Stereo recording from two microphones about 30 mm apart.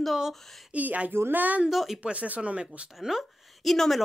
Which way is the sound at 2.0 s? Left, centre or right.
Right.